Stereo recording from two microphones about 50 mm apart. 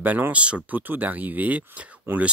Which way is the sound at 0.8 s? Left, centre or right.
Right.